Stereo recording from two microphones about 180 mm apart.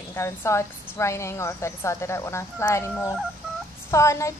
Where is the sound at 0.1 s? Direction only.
15° left (ahead or behind).